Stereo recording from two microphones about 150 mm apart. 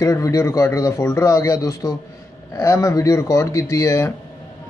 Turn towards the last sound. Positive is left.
turn(degrees=20)  # may be behind; listen again after turning